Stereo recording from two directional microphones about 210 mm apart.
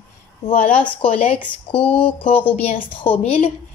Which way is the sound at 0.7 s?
5° left (ahead or behind).